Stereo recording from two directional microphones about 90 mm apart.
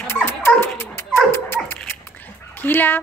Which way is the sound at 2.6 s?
20° left (ahead or behind).